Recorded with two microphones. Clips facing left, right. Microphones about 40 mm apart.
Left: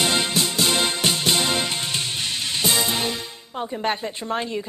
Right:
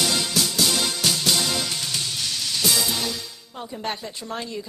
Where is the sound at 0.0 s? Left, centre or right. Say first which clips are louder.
Left 2 dB; left.